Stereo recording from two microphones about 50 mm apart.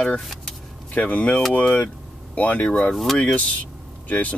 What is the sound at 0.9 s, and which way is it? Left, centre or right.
Speech, left.